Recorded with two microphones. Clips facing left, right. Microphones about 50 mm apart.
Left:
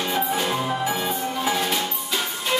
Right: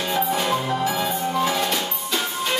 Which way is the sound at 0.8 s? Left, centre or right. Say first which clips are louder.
Right 2 dB; centre.